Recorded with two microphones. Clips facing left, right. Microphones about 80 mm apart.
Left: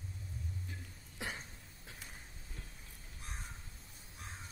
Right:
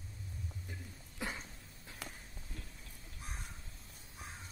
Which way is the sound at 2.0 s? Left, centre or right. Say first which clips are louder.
Right 7 dB; right.